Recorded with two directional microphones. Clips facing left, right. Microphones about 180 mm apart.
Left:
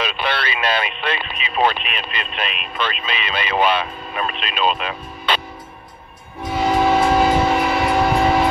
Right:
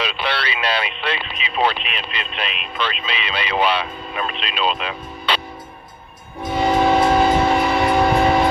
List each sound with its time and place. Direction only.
0.0 s speech: 50° left (ahead or behind)
6.5 s train: 5° left (ahead or behind)